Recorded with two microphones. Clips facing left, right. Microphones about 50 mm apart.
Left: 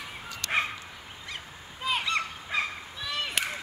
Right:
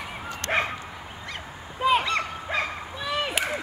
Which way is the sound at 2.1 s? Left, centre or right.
Centre.